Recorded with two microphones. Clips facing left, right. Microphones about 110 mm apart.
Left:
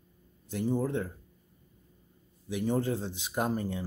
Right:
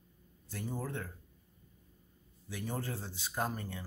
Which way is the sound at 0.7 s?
20° left (ahead or behind).